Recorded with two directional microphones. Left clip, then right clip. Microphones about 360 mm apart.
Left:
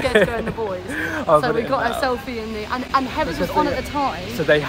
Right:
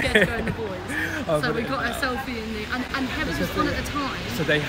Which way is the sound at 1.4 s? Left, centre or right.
Centre.